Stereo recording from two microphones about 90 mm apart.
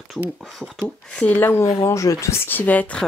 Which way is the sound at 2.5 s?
20° left (ahead or behind).